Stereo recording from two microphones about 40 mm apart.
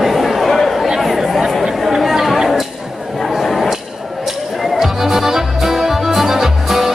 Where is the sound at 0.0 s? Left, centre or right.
Centre.